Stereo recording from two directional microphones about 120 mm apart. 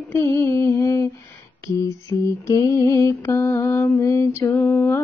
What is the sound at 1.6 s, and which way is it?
Mantra, 25° left (ahead or behind).